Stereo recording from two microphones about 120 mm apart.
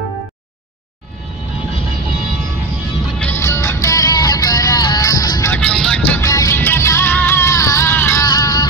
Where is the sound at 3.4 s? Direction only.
20° left (ahead or behind).